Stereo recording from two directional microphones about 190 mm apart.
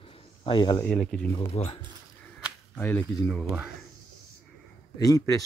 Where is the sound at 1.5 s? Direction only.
30° left (ahead or behind).